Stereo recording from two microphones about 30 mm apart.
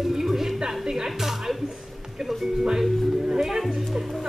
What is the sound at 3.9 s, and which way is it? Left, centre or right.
Speech, centre.